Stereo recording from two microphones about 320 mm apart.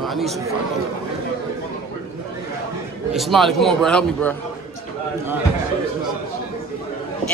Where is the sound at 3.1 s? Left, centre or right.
Centre.